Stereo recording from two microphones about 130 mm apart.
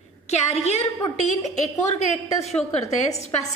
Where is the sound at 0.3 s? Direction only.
60° left (ahead or behind).